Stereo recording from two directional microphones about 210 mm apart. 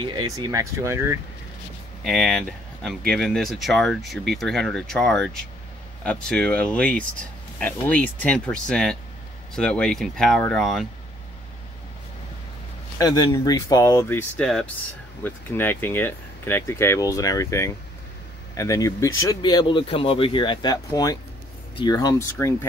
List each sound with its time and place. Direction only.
0.0 s speech: 20° right (ahead or behind)
2.0 s speech: centre (ahead or behind)
13.0 s speech: 20° left (ahead or behind)